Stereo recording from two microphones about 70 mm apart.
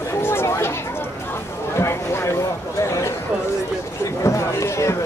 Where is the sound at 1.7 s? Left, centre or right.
Left.